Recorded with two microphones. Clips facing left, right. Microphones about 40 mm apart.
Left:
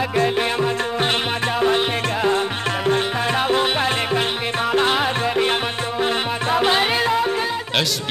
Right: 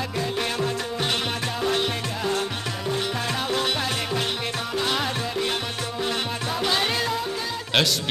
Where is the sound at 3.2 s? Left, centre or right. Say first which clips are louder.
Left 7 dB; left.